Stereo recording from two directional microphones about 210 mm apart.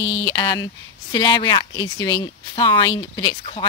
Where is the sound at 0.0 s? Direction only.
20° left (ahead or behind).